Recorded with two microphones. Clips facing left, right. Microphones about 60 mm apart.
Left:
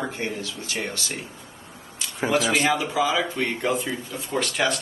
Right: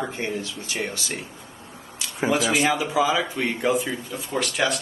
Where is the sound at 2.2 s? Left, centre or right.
Centre.